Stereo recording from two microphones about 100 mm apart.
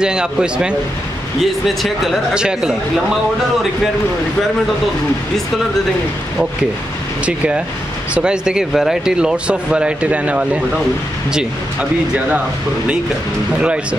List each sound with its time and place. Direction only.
0.0 s speech: 10° right (ahead or behind)
7.2 s speech: 10° right (ahead or behind)